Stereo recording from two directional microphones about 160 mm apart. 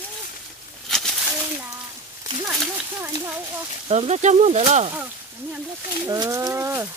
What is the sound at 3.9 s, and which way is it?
Speech, 45° right (ahead or behind).